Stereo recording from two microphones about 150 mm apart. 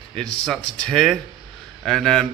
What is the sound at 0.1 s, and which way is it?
A man's voice, 5° left (ahead or behind).